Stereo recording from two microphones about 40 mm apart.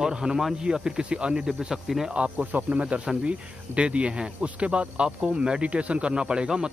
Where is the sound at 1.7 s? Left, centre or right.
Centre.